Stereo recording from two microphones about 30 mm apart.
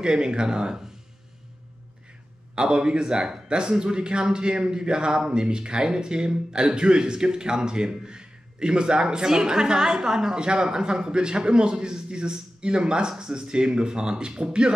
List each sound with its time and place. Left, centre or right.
0.0 s a man's voice: right
2.5 s a man's voice: right